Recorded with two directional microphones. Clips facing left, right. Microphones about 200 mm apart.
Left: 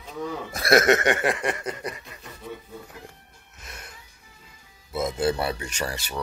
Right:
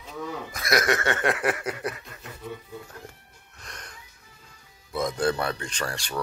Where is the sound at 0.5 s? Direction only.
30° left (ahead or behind).